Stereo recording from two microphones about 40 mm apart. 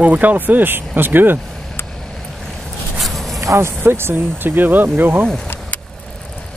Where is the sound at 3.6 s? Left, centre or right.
Right.